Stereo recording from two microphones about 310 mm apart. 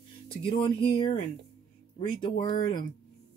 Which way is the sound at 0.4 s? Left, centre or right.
Centre.